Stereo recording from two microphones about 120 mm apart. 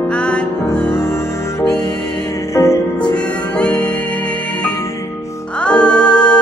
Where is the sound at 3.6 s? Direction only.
10° left (ahead or behind).